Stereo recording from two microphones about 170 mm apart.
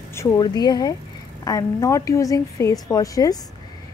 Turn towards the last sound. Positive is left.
turn(degrees=20)  # may be behind; listen again after turning